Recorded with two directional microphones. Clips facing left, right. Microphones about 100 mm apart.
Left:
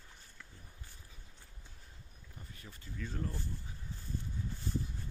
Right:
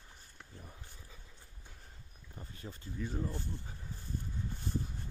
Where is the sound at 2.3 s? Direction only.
30° right (ahead or behind).